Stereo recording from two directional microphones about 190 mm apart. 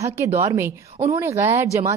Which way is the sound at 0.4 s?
15° right (ahead or behind).